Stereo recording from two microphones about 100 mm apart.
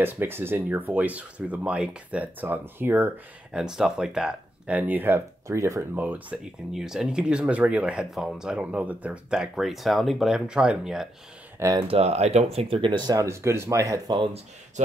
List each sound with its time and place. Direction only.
0.0 s speech: 20° right (ahead or behind)
3.5 s speech: 5° right (ahead or behind)
6.7 s speech: 5° right (ahead or behind)
11.9 s speech: 90° right; by 13.0 s 60° right (ahead or behind)
13.0 s speech: 35° right (ahead or behind)